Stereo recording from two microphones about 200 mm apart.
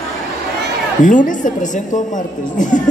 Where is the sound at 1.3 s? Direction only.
40° left (ahead or behind).